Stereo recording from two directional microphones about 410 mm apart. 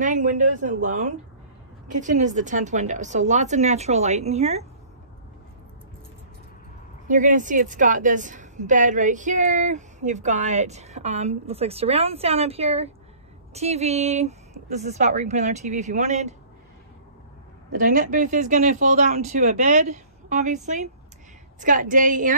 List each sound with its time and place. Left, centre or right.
0.0 s a woman's voice: centre
7.1 s a woman's voice: centre
17.7 s a woman's voice: centre